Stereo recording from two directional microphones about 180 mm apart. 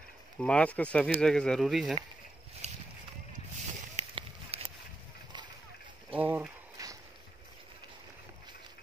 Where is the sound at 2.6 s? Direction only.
40° right (ahead or behind).